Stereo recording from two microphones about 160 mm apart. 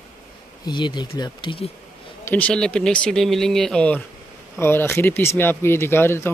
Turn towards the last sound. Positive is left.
turn(degrees=15)  # may be behind; listen again after turning